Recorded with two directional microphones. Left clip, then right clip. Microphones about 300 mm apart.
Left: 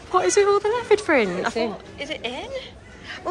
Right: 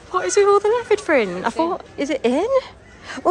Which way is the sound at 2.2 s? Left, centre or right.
Right.